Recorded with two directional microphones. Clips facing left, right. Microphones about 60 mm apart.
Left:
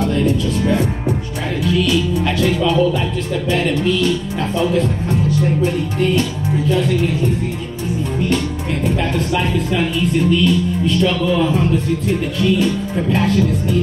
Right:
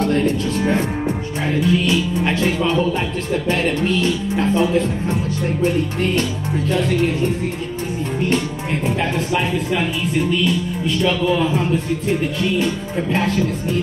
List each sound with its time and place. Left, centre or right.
1.7 s music: right
8.8 s speech: centre